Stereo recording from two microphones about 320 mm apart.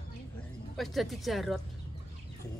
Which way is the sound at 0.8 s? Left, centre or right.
Centre.